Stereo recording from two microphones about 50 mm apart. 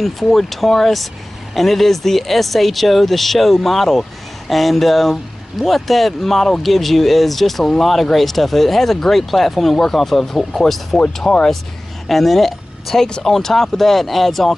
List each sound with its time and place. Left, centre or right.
0.0 s speech: centre
11.3 s speech: centre
12.1 s speech: centre